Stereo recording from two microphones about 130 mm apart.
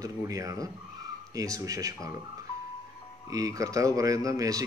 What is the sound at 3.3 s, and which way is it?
Speech, 25° right (ahead or behind).